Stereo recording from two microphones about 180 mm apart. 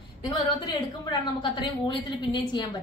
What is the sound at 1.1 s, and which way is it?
A woman's voice, 25° left (ahead or behind).